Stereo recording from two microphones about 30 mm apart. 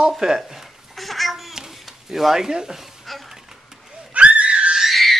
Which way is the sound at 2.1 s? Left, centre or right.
Centre.